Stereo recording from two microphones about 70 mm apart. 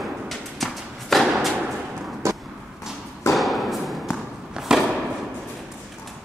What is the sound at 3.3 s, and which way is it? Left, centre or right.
Thump, centre.